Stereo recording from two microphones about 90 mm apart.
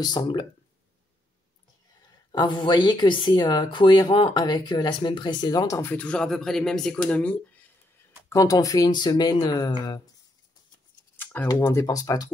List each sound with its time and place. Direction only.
0.0 s speech: 50° left (ahead or behind)
2.3 s speech: 55° left (ahead or behind)
4.1 s speech: 80° left
4.4 s speech: 55° left (ahead or behind)
5.7 s speech: 30° left (ahead or behind)
5.9 s speech: 10° left (ahead or behind)
8.3 s speech: 40° left (ahead or behind)
11.3 s speech: 20° left (ahead or behind)
11.8 s speech: 40° left (ahead or behind)